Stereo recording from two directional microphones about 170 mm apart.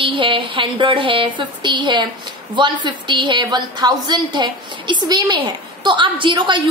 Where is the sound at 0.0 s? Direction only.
30° right (ahead or behind).